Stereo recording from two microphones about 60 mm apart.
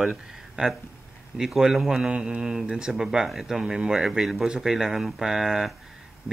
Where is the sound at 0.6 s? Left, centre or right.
Centre.